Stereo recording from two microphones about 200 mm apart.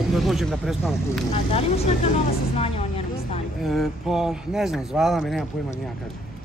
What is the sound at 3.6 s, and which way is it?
Speech, centre (ahead or behind).